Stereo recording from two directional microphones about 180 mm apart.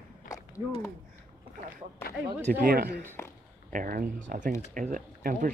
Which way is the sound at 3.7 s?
50° right (ahead or behind).